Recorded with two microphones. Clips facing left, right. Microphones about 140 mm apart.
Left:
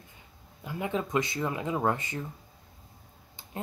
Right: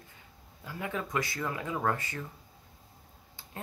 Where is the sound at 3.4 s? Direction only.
20° left (ahead or behind).